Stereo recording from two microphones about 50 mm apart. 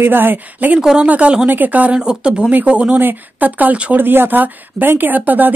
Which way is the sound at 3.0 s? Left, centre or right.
Right.